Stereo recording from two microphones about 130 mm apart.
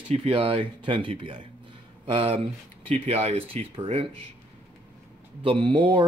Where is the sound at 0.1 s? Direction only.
50° right (ahead or behind).